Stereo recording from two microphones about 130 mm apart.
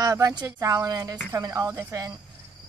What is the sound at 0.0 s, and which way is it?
A woman's voice, 30° right (ahead or behind).